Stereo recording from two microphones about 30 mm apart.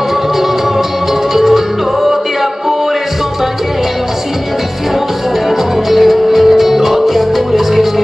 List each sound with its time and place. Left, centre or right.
1.3 s music: centre
5.9 s music: centre